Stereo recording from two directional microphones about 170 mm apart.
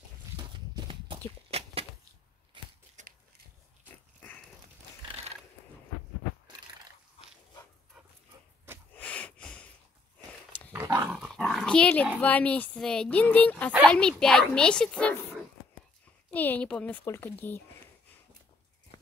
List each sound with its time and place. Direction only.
0.4 s a sound: 30° right (ahead or behind)
2.6 s scissors: 30° right (ahead or behind)
3.0 s a sound: 45° right (ahead or behind)
5.0 s horse: 35° right (ahead or behind)
8.9 s snort: 10° left (ahead or behind)
10.7 s dog: 15° right (ahead or behind); by 12.1 s 5° left (ahead or behind)
12.2 s a child's voice: 10° left (ahead or behind)
16.3 s speech: 10° left (ahead or behind)